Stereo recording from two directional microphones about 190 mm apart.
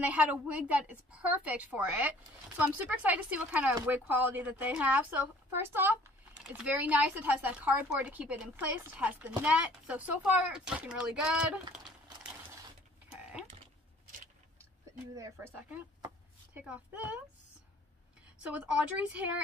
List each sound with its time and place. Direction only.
0.0 s a woman's voice: 10° right (ahead or behind)
13.1 s a sound: 5° right (ahead or behind)
15.1 s a woman's voice: 15° right (ahead or behind)
18.4 s a woman's voice: 5° right (ahead or behind)